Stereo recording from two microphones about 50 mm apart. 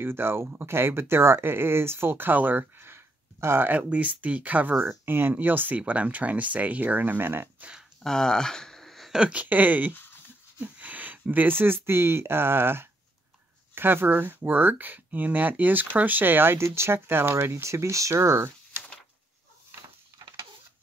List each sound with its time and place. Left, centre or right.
0.0 s speech: right
3.6 s speech: right
4.8 s speech: right
8.0 s a sound: centre
9.3 s speech: right
16.5 s speech: right